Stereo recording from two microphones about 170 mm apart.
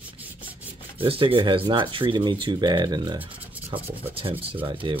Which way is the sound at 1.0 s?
30° right (ahead or behind).